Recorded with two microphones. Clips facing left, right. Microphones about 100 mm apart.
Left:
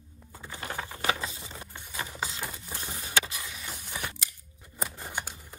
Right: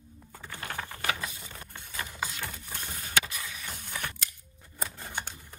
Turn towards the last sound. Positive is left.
turn(degrees=15)  # may be behind; listen again after turning